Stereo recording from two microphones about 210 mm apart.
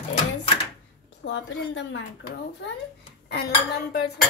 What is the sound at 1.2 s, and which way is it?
Speech, 60° left (ahead or behind).